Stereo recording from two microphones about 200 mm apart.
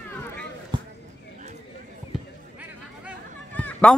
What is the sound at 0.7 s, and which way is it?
Basketball bounce, 25° right (ahead or behind).